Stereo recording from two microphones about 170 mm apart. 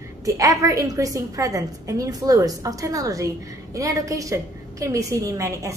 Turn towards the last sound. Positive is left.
turn(degrees=-20)  # may be behind; listen again after turning